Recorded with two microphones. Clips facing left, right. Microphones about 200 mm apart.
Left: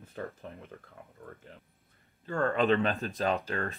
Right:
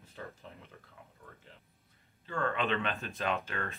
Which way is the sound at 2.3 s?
40° left (ahead or behind).